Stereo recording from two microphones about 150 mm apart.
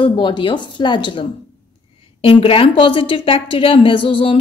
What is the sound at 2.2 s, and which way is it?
A woman's voice, 35° left (ahead or behind).